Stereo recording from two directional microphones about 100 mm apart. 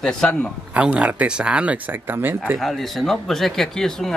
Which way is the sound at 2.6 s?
Centre (ahead or behind).